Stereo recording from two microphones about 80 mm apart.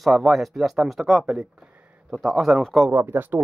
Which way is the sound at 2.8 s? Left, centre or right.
Right.